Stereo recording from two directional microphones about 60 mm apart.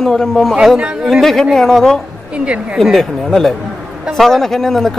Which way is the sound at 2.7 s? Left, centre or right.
Centre.